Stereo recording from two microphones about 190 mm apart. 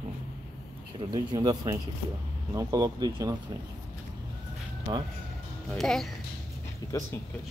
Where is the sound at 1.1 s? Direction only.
20° right (ahead or behind).